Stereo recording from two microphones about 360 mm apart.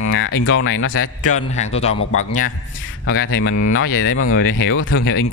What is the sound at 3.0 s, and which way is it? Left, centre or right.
Speech, left.